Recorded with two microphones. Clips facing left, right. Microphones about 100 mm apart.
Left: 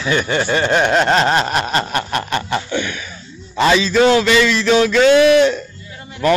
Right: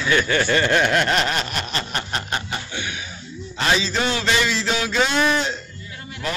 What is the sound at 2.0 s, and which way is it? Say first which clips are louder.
Chicken: left 7 dB; 65° left (ahead or behind).